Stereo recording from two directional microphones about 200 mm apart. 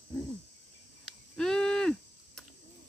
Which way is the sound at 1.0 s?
5° left (ahead or behind).